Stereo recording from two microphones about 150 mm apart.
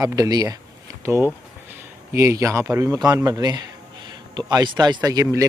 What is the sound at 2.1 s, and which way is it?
Speech, 15° right (ahead or behind).